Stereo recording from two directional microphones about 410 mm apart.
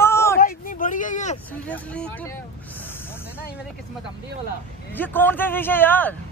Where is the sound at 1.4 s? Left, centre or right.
Centre.